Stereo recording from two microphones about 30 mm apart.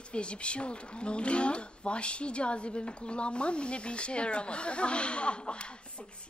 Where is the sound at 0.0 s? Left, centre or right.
Left.